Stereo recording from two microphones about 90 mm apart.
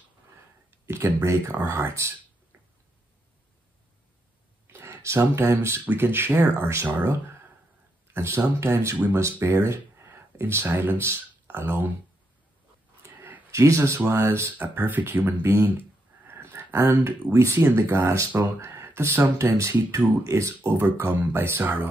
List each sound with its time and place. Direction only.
0.7 s speech: 30° right (ahead or behind)
4.7 s speech: 30° right (ahead or behind)
13.0 s a sound: 35° right (ahead or behind)
13.5 s speech: 35° right (ahead or behind)
16.3 s a sound: 30° right (ahead or behind)
17.3 s speech: 30° right (ahead or behind)